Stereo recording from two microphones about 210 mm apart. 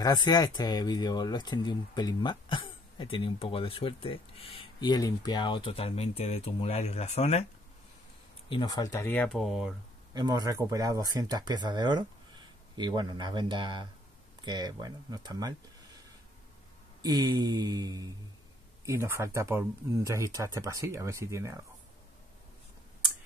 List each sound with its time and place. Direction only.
0.0 s speech: 20° left (ahead or behind)
8.5 s speech: 20° left (ahead or behind); by 9.8 s centre (ahead or behind)
10.1 s speech: 20° right (ahead or behind)
17.0 s speech: 20° right (ahead or behind)